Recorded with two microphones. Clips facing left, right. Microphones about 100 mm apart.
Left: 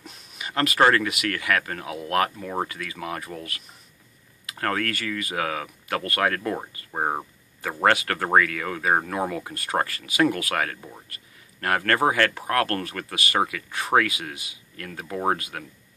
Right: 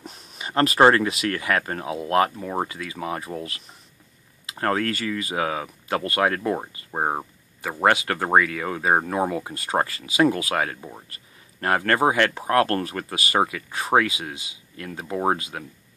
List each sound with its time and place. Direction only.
0.0 s speech: 35° right (ahead or behind)
2.3 s speech: 15° right (ahead or behind)